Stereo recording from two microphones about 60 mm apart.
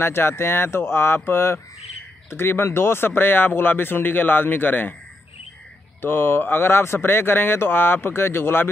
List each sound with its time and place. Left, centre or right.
0.0 s speech: left
5.9 s speech: left